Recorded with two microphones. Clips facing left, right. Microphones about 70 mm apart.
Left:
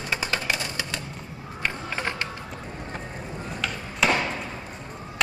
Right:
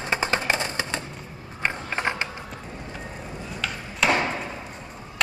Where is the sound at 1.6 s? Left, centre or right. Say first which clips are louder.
Right 3 dB; right.